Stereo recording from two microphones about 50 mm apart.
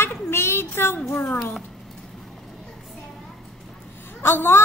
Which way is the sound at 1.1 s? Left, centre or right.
Left.